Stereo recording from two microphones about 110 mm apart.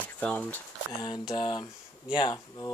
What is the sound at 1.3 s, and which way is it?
Speech, 45° left (ahead or behind).